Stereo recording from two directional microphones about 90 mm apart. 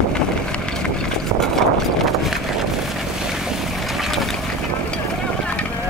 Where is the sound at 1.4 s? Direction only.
5° left (ahead or behind).